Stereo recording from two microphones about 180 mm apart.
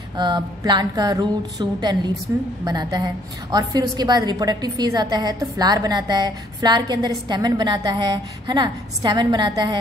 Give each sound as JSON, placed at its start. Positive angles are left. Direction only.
{"t": 0.2, "sound": "a woman's voice", "side_deg": -25}